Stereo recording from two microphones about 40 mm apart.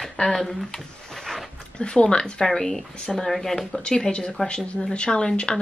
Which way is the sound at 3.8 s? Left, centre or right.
Left.